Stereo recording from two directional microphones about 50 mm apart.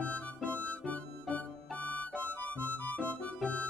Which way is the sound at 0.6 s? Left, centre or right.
Left.